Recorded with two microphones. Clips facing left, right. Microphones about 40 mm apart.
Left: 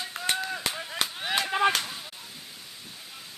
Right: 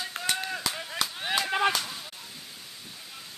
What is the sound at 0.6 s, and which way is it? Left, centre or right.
Chop, left.